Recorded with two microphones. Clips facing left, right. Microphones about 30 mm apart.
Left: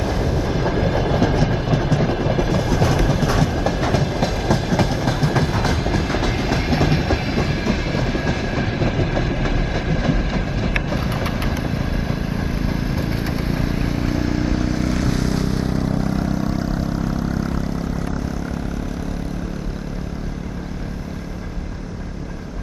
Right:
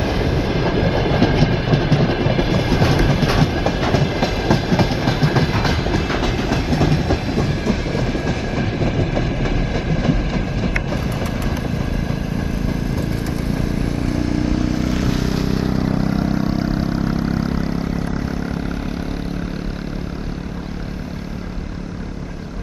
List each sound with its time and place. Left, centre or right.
0.0 s train: right
3.6 s train: centre
5.9 s train: centre
11.7 s vehicle: centre; by 18.0 s right